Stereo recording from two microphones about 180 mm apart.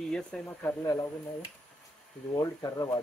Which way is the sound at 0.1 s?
5° left (ahead or behind).